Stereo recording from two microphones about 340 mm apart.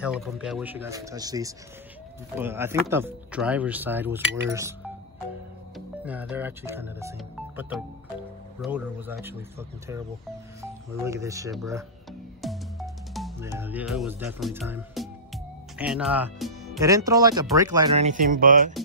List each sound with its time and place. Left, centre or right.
0.0 s speech: centre
6.0 s speech: centre; by 18.7 s right